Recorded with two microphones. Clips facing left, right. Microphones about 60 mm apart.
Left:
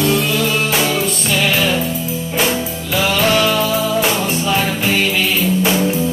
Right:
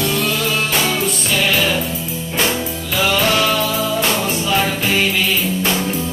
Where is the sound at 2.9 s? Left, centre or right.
Centre.